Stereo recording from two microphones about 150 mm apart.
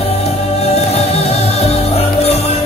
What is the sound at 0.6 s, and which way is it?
Music, 45° left (ahead or behind).